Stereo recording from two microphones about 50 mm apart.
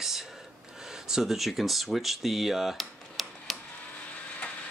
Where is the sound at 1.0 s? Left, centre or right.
Centre.